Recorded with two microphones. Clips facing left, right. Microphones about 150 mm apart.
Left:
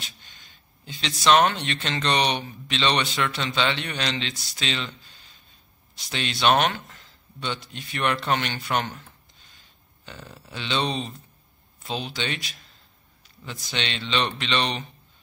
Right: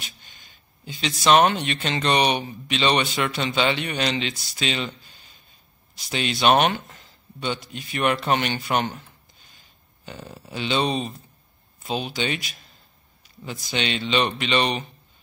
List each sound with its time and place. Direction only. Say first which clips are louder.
0.8 s speech: right 1 dB; 5° right (ahead or behind)
5.9 s speech: right 4 dB; 5° right (ahead or behind)
10.0 s speech: right 4 dB; 15° right (ahead or behind)
13.4 s a man's voice: right 4 dB; 20° right (ahead or behind)
13.7 s speech: right 4 dB; 10° right (ahead or behind)